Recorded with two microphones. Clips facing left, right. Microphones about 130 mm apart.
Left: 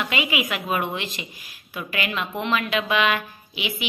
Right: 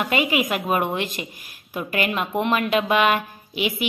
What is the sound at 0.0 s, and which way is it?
A woman's voice, 45° right (ahead or behind).